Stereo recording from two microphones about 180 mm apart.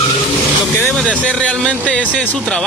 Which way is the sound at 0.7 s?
5° left (ahead or behind).